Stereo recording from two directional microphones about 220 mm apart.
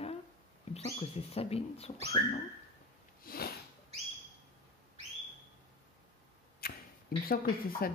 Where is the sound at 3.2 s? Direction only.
45° left (ahead or behind).